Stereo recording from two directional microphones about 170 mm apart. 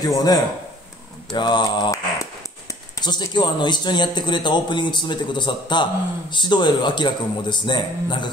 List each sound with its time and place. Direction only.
0.0 s speech: 20° left (ahead or behind)